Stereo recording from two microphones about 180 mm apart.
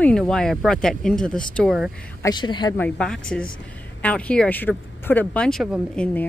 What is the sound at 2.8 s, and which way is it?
Speech, 5° left (ahead or behind).